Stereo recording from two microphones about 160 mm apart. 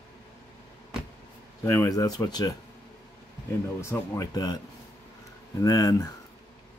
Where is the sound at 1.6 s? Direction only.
20° left (ahead or behind).